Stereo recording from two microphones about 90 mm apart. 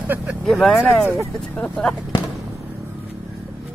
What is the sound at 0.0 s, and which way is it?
Speech, 20° right (ahead or behind).